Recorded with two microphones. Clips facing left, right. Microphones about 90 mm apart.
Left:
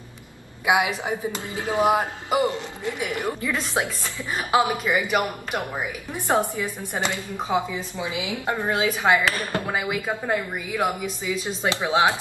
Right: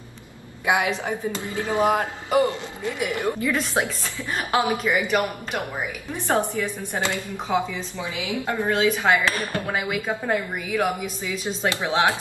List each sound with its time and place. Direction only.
0.7 s a woman's voice: 10° left (ahead or behind)
3.8 s a woman's voice: centre (ahead or behind)
4.4 s a woman's voice: 15° left (ahead or behind)
11.6 s a woman's voice: 15° left (ahead or behind)